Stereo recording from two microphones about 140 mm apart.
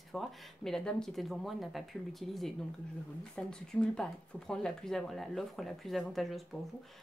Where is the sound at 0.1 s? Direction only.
Centre (ahead or behind).